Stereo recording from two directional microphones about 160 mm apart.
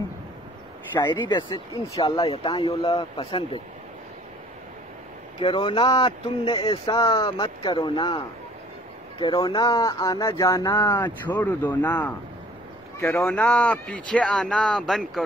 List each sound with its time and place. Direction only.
0.9 s speech: 25° left (ahead or behind)
5.4 s speech: 30° left (ahead or behind)
9.2 s speech: 30° left (ahead or behind)
11.4 s speech: 10° left (ahead or behind)
13.3 s speech: 5° left (ahead or behind)